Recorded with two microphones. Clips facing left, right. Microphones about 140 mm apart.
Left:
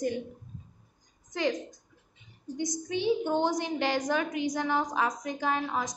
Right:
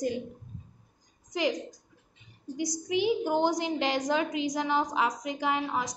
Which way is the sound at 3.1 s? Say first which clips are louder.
Left 1 dB; 10° right (ahead or behind).